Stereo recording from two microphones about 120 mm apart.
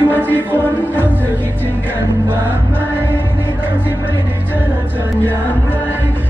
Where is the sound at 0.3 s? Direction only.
15° left (ahead or behind).